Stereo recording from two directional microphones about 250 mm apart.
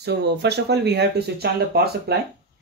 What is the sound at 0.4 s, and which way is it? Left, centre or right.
Speech, right.